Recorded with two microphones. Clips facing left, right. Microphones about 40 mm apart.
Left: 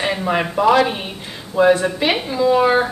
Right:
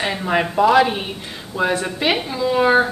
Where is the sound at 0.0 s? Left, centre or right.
Centre.